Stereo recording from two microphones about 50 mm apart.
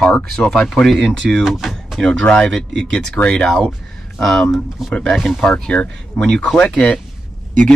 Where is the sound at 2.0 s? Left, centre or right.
Centre.